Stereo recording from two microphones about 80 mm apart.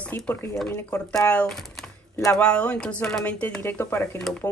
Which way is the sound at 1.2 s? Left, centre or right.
Centre.